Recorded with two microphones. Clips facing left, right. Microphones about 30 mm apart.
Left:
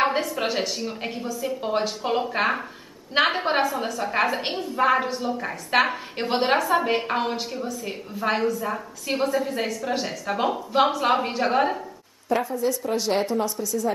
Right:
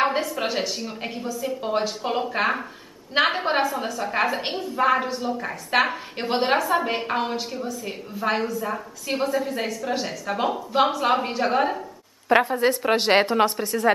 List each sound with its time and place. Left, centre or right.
0.0 s a woman's voice: centre
12.3 s a woman's voice: right